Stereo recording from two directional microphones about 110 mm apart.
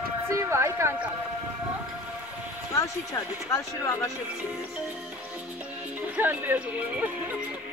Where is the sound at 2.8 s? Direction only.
30° left (ahead or behind).